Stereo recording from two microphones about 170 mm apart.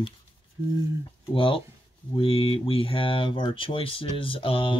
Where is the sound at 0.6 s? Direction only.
20° right (ahead or behind).